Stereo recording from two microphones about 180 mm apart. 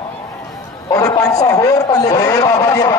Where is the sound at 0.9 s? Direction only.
20° left (ahead or behind).